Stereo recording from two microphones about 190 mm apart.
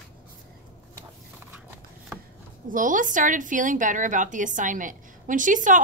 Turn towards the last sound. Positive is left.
turn(degrees=-45)  # may be behind; listen again after turning